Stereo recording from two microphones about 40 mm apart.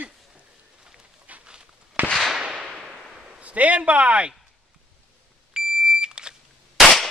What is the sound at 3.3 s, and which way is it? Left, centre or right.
Speech, right.